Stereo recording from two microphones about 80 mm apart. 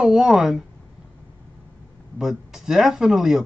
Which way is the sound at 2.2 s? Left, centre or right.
Centre.